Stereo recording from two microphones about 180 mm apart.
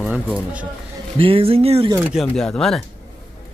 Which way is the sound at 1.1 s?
30° right (ahead or behind).